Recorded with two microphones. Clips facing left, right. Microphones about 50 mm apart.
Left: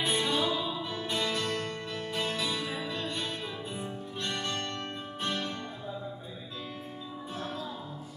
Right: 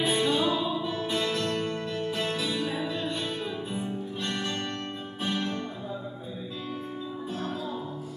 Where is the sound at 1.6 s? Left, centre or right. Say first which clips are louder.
Right 5 dB; centre.